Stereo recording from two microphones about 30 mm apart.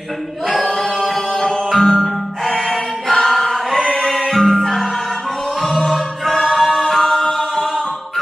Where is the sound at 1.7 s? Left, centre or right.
Centre.